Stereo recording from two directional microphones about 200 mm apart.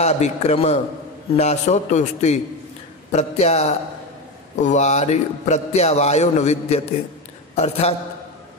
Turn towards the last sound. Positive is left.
turn(degrees=30)  # may be behind; listen again after turning